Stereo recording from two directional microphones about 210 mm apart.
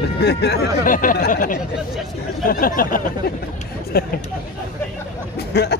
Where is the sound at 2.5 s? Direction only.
40° left (ahead or behind).